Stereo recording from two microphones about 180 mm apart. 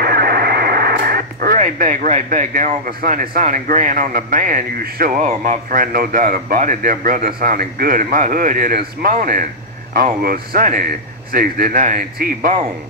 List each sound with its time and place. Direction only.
0.0 s radio: 60° right (ahead or behind)
1.6 s a man's voice: 45° right (ahead or behind)